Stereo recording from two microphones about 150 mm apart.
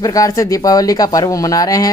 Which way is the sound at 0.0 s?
25° left (ahead or behind).